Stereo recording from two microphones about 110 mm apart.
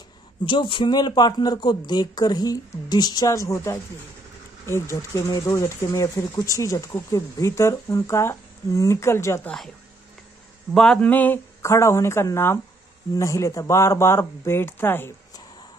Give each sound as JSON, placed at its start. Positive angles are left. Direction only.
{"t": 0.5, "sound": "speech", "side_deg": 50}
{"t": 3.3, "sound": "speech", "side_deg": 30}
{"t": 10.7, "sound": "speech", "side_deg": 5}
{"t": 11.6, "sound": "speech", "side_deg": 25}